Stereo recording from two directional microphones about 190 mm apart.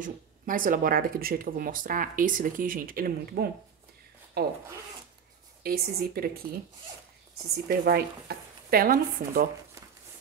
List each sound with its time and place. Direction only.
0.0 s speech: 45° right (ahead or behind)
5.6 s speech: 50° right (ahead or behind)
7.6 s speech: 50° right (ahead or behind)